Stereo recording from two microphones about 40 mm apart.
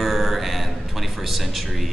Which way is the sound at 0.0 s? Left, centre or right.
Centre.